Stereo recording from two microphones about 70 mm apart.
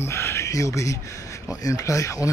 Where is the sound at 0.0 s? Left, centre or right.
Left.